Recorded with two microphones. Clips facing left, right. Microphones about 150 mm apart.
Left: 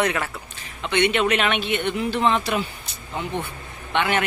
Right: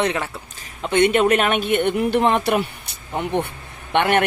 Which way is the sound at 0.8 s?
45° right (ahead or behind).